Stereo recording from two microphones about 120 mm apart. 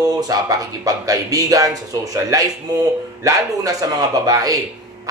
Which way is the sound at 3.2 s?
30° right (ahead or behind).